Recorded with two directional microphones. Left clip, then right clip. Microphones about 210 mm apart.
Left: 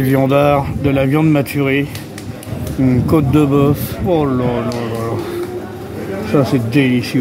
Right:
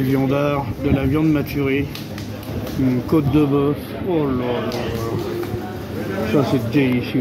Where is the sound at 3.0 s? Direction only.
60° left (ahead or behind).